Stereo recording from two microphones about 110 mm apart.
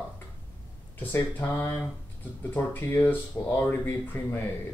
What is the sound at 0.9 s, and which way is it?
Speech, 20° left (ahead or behind).